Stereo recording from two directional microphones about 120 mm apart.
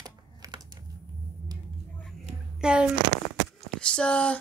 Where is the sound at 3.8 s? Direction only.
10° left (ahead or behind).